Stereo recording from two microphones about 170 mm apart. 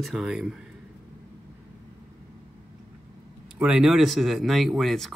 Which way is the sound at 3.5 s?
5° right (ahead or behind).